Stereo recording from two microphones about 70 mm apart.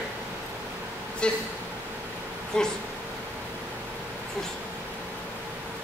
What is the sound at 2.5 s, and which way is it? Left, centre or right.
Speech, centre.